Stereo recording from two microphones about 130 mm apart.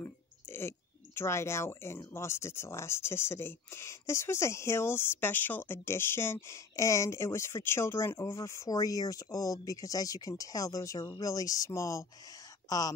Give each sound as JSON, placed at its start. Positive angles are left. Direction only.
{"t": 0.0, "sound": "speech", "side_deg": 20}